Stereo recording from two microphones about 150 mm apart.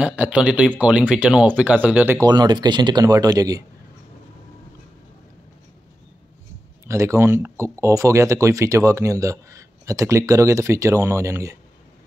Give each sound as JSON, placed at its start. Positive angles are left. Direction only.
{"t": 0.0, "sound": "speech", "side_deg": -10}
{"t": 2.1, "sound": "speech", "side_deg": -25}
{"t": 6.9, "sound": "speech", "side_deg": -20}